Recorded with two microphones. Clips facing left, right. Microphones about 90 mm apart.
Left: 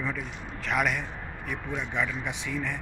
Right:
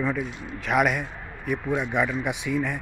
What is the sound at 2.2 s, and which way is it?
Speech, 10° right (ahead or behind).